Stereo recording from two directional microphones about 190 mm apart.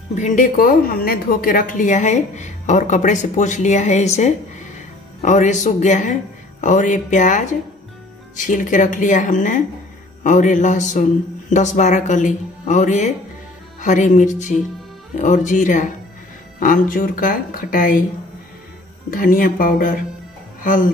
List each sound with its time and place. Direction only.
0.1 s a woman's voice: 40° left (ahead or behind)
19.0 s speech: 45° left (ahead or behind)